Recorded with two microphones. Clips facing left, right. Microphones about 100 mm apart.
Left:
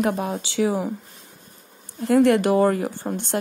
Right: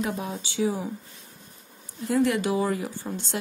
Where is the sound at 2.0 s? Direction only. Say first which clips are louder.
Left 7 dB; 60° left (ahead or behind).